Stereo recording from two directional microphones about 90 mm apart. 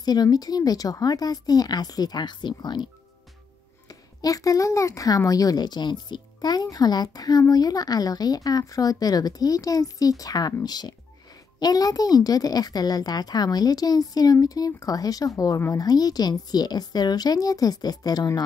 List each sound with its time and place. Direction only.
0.0 s speech: 45° left (ahead or behind)
4.2 s speech: 40° left (ahead or behind)